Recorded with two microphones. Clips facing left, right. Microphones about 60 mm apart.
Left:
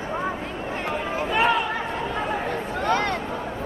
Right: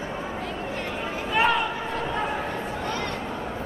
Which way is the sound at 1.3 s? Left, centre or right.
Centre.